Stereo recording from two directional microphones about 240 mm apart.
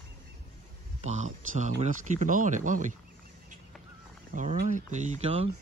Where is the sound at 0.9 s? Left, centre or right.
Right.